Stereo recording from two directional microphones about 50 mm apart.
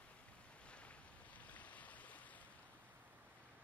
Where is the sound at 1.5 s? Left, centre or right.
Left.